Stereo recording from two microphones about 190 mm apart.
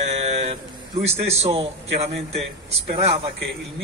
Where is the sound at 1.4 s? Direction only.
30° right (ahead or behind).